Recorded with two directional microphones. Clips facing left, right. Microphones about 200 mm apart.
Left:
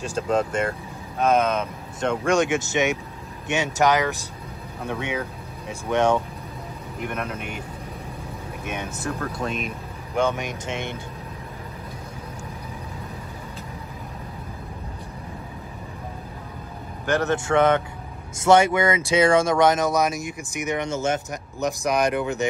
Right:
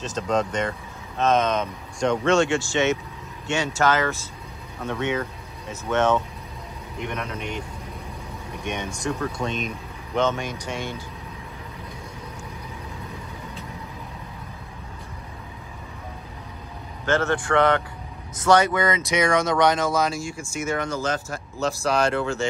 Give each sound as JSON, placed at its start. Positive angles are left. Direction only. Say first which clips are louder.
{"t": 0.0, "sound": "a man's voice", "louder": "left 1 dB", "side_deg": 10}
{"t": 8.6, "sound": "speech", "louder": "right 2 dB", "side_deg": 5}
{"t": 17.0, "sound": "speech", "louder": "even", "side_deg": 15}